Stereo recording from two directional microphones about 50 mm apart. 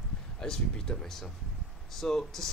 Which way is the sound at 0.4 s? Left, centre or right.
Centre.